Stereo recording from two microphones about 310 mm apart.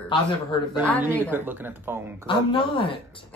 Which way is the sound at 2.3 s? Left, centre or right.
Centre.